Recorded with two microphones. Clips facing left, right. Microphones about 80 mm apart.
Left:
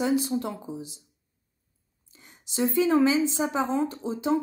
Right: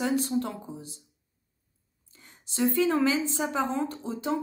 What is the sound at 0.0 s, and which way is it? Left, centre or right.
Speech, centre.